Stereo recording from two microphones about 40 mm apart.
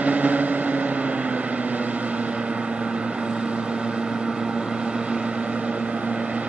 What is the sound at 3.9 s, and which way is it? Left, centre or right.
Vehicle, right.